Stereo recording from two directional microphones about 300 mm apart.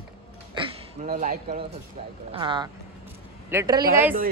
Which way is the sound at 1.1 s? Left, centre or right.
Right.